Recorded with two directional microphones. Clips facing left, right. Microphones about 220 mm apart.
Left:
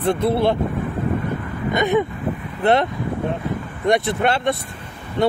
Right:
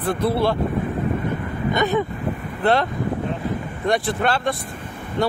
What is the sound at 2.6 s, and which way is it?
Speech, 20° left (ahead or behind).